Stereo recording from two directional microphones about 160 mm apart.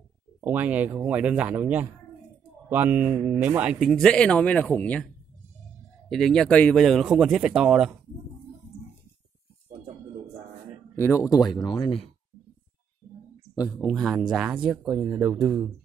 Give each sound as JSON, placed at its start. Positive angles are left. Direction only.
{"t": 0.4, "sound": "speech", "side_deg": -10}
{"t": 3.9, "sound": "speech", "side_deg": 5}
{"t": 6.0, "sound": "speech", "side_deg": 0}
{"t": 11.0, "sound": "speech", "side_deg": 15}
{"t": 13.7, "sound": "speech", "side_deg": 0}